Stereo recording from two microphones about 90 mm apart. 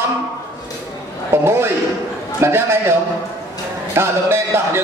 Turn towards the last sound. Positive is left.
turn(degrees=-25)  # may be behind; listen again after turning